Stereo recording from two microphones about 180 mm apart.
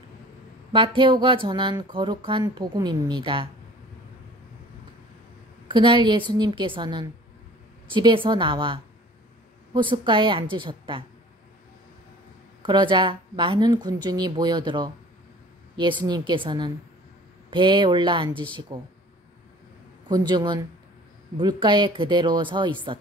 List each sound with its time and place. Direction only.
0.7 s speech: 25° right (ahead or behind)
5.7 s speech: 25° right (ahead or behind)
12.6 s speech: 25° right (ahead or behind)
20.1 s speech: 20° right (ahead or behind)